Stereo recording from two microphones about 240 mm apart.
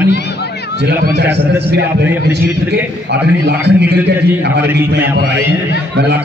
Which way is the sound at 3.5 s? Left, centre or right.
Right.